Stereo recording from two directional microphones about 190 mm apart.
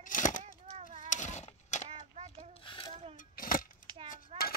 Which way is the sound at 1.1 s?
40° left (ahead or behind).